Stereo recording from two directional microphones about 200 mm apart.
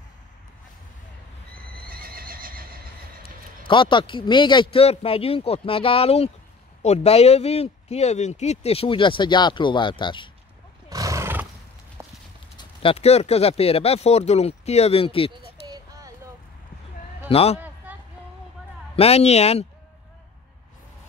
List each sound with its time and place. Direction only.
1.9 s neigh: 45° right (ahead or behind)
3.6 s speech: 25° left (ahead or behind)
10.9 s horse: 15° right (ahead or behind)
12.0 s clip-clop: 15° right (ahead or behind)
12.5 s speech: 30° left (ahead or behind)
15.6 s child singing: 20° right (ahead or behind)
17.3 s speech: 30° left (ahead or behind)
17.6 s a sound: 10° right (ahead or behind)
18.9 s speech: 30° left (ahead or behind)